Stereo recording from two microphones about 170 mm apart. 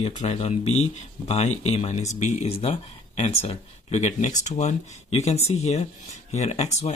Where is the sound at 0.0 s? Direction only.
40° left (ahead or behind).